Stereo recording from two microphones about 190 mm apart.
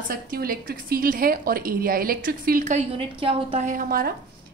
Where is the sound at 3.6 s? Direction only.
45° right (ahead or behind).